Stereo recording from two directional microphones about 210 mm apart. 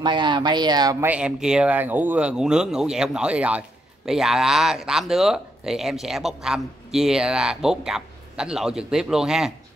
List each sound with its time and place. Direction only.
0.0 s speech: 20° right (ahead or behind)
1.0 s speech: 5° right (ahead or behind)